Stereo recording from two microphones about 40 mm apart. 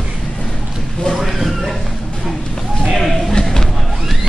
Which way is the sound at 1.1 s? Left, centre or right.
Centre.